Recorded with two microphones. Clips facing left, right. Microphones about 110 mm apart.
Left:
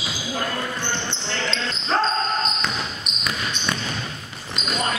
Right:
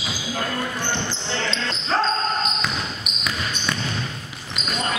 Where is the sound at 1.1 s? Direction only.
Centre (ahead or behind).